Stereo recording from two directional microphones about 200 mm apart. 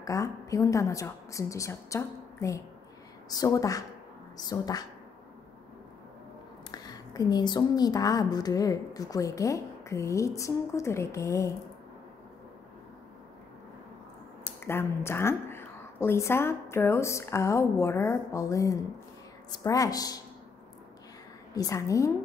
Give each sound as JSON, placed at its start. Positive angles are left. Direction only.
{"t": 0.0, "sound": "a woman's voice", "side_deg": 15}
{"t": 6.7, "sound": "a woman's voice", "side_deg": 20}
{"t": 14.6, "sound": "a woman's voice", "side_deg": 10}
{"t": 21.5, "sound": "a woman's voice", "side_deg": 15}